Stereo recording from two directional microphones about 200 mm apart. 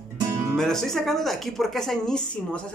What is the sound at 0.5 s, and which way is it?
Speech, centre (ahead or behind).